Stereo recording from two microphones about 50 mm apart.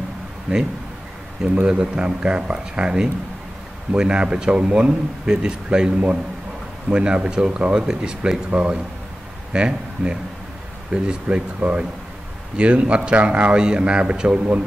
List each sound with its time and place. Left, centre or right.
0.5 s a man's voice: right
1.7 s a man's voice: centre
6.9 s a man's voice: right